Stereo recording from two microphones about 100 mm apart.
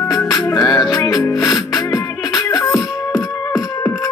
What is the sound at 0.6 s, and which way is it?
Music, 45° left (ahead or behind).